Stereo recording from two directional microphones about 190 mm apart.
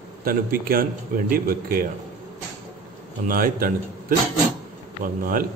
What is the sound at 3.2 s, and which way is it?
Speech, 50° right (ahead or behind).